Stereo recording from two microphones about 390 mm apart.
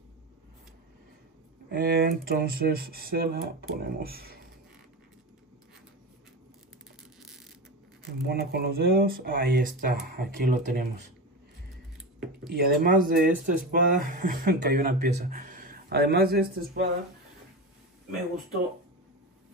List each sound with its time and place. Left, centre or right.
1.8 s speech: right
8.3 s speech: right
12.5 s speech: right